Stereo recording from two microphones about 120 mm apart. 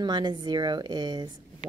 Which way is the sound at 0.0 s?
35° right (ahead or behind).